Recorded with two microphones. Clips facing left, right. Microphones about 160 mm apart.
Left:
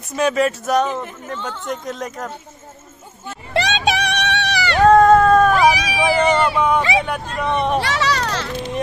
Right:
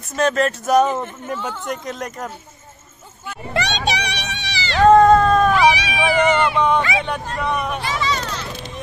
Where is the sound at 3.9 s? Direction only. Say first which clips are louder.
Left 6 dB; 55° left (ahead or behind).